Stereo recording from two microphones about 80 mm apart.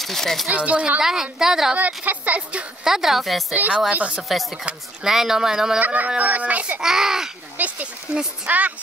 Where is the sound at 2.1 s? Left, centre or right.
Centre.